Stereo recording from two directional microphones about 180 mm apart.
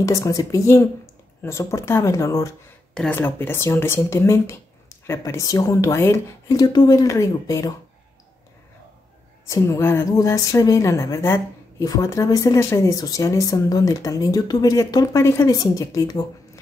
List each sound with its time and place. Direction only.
0.0 s a woman's voice: 15° left (ahead or behind)
9.5 s a woman's voice: 15° left (ahead or behind)